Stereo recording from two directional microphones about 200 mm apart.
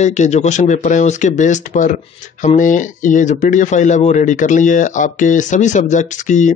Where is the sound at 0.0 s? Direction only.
35° left (ahead or behind).